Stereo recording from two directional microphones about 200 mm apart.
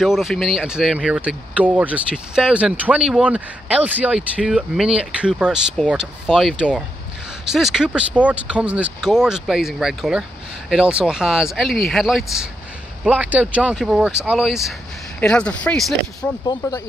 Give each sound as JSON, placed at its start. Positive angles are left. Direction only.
{"t": 0.0, "sound": "speech", "side_deg": 0}
{"t": 16.4, "sound": "speech", "side_deg": 15}